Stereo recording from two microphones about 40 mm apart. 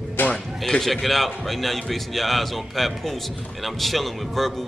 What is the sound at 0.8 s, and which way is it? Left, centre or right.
A man's voice, centre.